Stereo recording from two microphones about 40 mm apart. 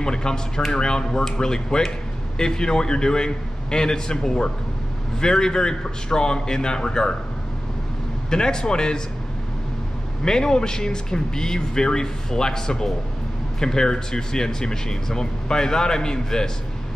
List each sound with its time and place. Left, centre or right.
0.0 s a man's voice: centre
8.3 s speech: centre
10.2 s speech: centre